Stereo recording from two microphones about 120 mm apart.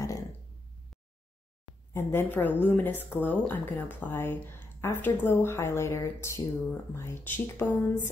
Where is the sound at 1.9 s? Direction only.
20° left (ahead or behind).